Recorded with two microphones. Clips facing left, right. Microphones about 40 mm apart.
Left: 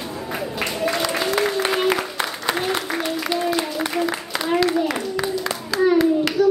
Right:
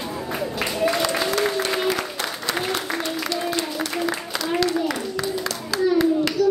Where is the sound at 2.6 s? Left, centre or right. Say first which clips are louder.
Even; centre.